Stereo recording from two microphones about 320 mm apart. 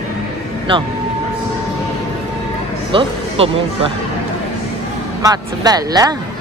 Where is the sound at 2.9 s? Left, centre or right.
Centre.